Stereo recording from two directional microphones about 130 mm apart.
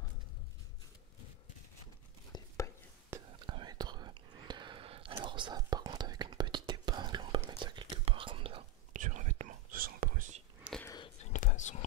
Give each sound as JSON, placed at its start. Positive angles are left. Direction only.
{"t": 2.3, "sound": "whispering", "side_deg": 25}
{"t": 3.1, "sound": "whispering", "side_deg": -20}
{"t": 3.4, "sound": "whispering", "side_deg": -35}
{"t": 8.9, "sound": "whispering", "side_deg": -70}
{"t": 10.7, "sound": "a sound", "side_deg": -10}
{"t": 11.3, "sound": "whispering", "side_deg": 70}